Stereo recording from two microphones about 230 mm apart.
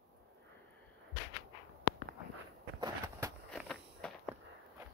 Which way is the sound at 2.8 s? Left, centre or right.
Centre.